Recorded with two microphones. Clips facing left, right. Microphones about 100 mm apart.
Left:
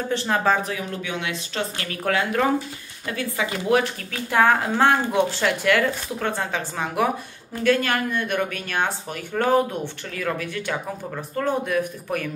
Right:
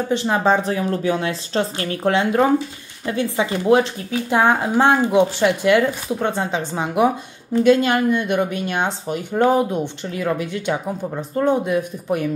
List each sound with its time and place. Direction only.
0.1 s speech: 20° right (ahead or behind)